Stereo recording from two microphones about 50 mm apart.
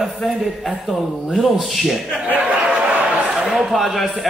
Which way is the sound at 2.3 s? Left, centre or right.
Right.